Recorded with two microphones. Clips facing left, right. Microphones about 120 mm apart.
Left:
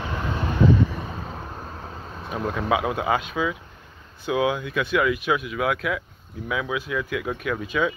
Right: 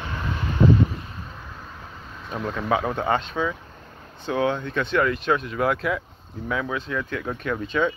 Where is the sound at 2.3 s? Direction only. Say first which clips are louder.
Left 1 dB; 10° left (ahead or behind).